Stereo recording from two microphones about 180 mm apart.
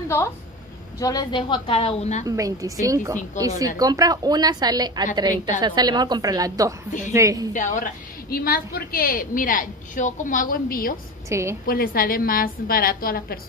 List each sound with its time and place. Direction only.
0.9 s a woman's voice: 20° left (ahead or behind); by 2.2 s 35° left (ahead or behind)
2.2 s a woman's voice: 20° right (ahead or behind)
6.9 s a woman's voice: 45° left (ahead or behind)
7.2 s a woman's voice: 20° right (ahead or behind)
7.5 s a woman's voice: 45° left (ahead or behind)
11.2 s a woman's voice: 15° right (ahead or behind)
11.6 s a woman's voice: 55° left (ahead or behind)